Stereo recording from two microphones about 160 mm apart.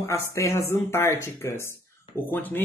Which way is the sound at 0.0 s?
15° left (ahead or behind).